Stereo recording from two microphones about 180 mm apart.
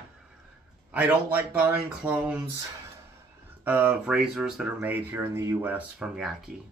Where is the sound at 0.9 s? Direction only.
10° right (ahead or behind).